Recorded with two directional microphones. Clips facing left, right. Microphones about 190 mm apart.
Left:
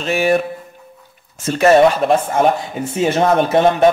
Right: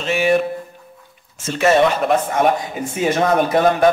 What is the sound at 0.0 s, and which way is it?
Speech, 45° left (ahead or behind).